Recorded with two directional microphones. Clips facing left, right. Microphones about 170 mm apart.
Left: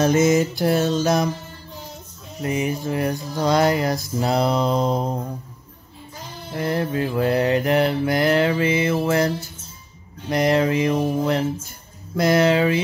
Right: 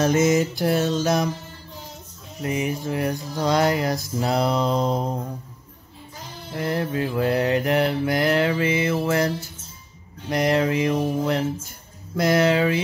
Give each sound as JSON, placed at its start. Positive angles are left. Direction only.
{"t": 0.0, "sound": "mantra", "side_deg": 30}
{"t": 2.5, "sound": "mantra", "side_deg": 40}
{"t": 6.6, "sound": "mantra", "side_deg": 30}
{"t": 10.3, "sound": "mantra", "side_deg": 30}
{"t": 12.2, "sound": "speech", "side_deg": 25}